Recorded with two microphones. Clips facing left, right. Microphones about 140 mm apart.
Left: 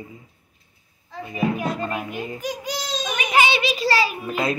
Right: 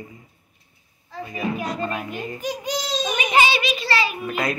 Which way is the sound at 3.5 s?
30° left (ahead or behind).